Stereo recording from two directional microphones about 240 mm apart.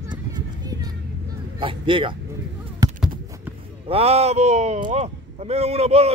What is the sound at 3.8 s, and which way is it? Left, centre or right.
A man's voice, right.